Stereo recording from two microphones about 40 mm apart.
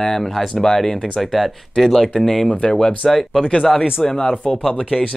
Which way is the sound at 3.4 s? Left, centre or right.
Left.